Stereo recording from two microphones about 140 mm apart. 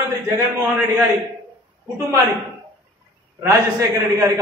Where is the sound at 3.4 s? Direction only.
20° right (ahead or behind).